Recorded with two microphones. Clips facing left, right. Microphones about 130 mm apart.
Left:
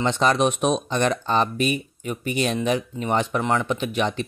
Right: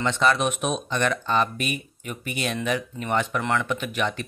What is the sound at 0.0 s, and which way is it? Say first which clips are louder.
Speech: left 2 dB; 35° left (ahead or behind).